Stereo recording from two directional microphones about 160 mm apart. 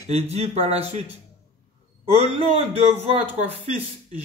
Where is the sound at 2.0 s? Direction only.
40° right (ahead or behind).